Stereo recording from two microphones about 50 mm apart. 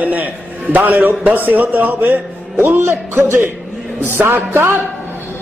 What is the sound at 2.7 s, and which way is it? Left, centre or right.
Speech, right.